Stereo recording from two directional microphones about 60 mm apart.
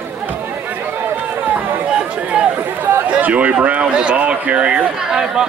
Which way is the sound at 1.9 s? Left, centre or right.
Centre.